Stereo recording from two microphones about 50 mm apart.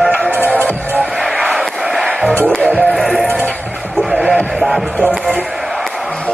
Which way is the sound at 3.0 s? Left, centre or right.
Centre.